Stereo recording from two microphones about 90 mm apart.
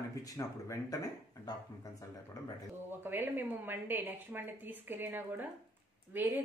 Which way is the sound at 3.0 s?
25° right (ahead or behind).